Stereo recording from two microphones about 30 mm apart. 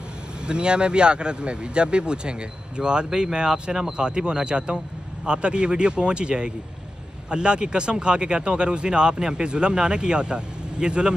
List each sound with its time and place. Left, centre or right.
0.5 s speech: right